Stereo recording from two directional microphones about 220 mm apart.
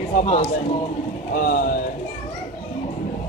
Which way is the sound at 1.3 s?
40° left (ahead or behind).